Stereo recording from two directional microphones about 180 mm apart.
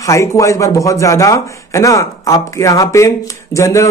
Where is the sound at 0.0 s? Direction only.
15° left (ahead or behind).